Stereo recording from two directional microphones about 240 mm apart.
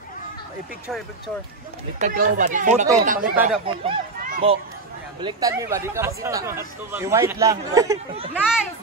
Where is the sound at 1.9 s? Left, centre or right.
Right.